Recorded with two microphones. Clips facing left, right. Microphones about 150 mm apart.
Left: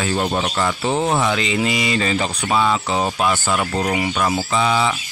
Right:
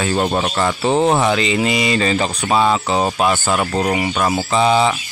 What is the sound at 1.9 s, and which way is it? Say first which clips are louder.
Speech: right 3 dB; 45° right (ahead or behind).